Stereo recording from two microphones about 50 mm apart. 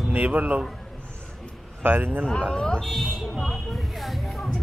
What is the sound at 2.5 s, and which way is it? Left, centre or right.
Speech, centre.